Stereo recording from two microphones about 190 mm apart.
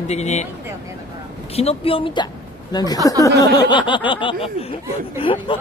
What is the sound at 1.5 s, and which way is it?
Speech, 30° left (ahead or behind).